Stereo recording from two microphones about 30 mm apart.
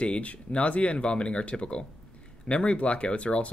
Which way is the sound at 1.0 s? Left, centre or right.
Left.